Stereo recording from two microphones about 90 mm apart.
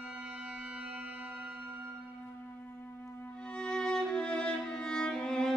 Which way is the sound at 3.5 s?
10° left (ahead or behind).